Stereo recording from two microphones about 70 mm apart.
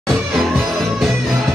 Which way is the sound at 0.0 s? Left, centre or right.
Centre.